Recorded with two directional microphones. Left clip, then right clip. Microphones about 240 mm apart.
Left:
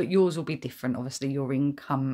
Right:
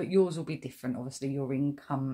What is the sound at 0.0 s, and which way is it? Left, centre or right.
Speech, left.